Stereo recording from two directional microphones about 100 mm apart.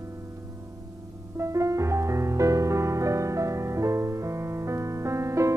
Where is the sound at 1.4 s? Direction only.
30° right (ahead or behind).